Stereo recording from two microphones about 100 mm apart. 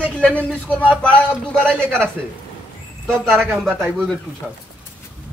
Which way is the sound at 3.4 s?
10° right (ahead or behind).